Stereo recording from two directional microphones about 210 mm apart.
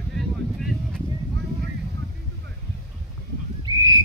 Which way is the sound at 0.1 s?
Centre (ahead or behind).